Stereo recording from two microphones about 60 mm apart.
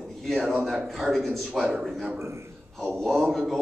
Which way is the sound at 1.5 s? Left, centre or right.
Centre.